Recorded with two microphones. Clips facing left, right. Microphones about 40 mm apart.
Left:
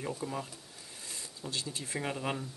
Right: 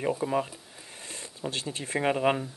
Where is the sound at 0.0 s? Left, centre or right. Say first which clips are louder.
Right 9 dB; right.